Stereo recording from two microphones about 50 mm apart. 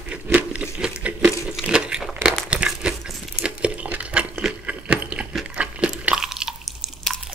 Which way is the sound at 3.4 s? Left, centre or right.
Right.